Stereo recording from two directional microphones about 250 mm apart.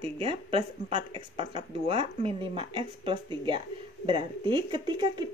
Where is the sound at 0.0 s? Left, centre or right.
Right.